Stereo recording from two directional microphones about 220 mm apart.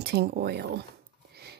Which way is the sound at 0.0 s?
45° right (ahead or behind).